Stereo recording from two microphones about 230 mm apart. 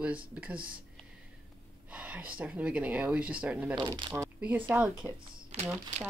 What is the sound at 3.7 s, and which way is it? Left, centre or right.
Speech, centre.